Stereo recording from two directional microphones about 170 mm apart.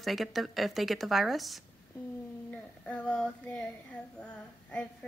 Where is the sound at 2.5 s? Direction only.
5° left (ahead or behind).